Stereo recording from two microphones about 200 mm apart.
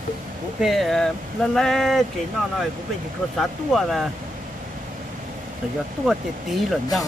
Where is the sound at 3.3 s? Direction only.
Centre (ahead or behind).